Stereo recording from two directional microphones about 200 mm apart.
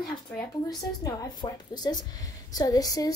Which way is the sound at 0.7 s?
20° left (ahead or behind).